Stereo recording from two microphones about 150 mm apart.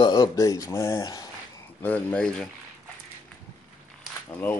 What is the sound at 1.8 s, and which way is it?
Speech, 10° left (ahead or behind).